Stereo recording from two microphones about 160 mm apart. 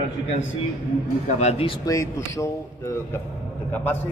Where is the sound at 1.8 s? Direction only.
20° left (ahead or behind).